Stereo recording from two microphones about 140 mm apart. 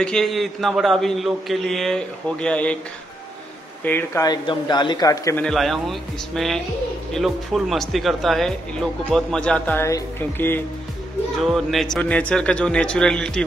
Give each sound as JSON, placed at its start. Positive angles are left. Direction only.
{"t": 0.0, "sound": "a man's voice", "side_deg": 5}
{"t": 3.8, "sound": "music", "side_deg": 15}
{"t": 4.2, "sound": "a man's voice", "side_deg": 30}
{"t": 5.4, "sound": "a man's voice", "side_deg": 0}
{"t": 9.8, "sound": "music", "side_deg": 20}
{"t": 11.3, "sound": "a man's voice", "side_deg": 0}